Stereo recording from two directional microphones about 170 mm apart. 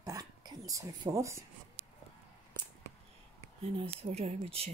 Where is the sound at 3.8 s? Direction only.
35° right (ahead or behind).